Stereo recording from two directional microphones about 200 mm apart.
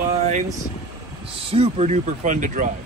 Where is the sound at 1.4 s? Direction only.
30° right (ahead or behind).